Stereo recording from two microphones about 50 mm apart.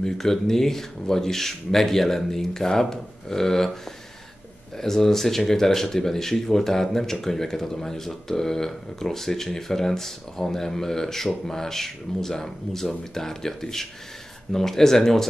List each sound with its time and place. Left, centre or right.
0.0 s speech: centre
4.7 s speech: centre